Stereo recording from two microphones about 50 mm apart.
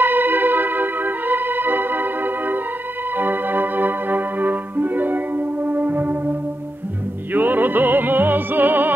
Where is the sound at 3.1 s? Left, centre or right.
Right.